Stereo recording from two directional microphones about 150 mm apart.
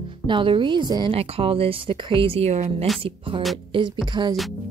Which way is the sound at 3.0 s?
35° right (ahead or behind).